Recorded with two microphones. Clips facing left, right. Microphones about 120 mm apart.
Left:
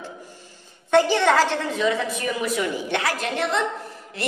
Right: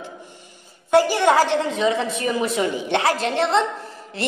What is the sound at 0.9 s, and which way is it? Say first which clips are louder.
A woman's voice: right 2 dB; 10° right (ahead or behind).